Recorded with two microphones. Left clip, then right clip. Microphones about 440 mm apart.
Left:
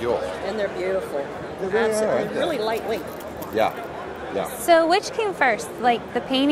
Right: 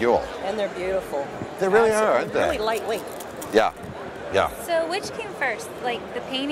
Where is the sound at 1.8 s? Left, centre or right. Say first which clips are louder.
Right 2 dB; right.